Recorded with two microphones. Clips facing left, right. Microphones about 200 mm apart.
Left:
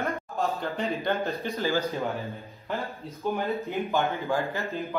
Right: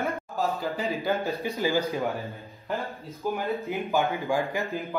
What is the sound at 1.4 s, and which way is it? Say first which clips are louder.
Speech: right 3 dB; 15° right (ahead or behind).